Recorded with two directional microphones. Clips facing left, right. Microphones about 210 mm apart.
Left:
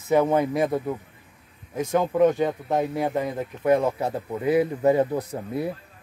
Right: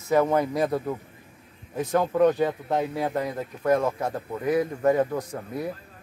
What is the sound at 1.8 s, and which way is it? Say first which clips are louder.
Speech: left 1 dB; centre (ahead or behind).